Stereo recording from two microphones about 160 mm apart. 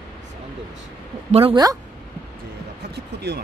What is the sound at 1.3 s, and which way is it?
Speech, 35° right (ahead or behind).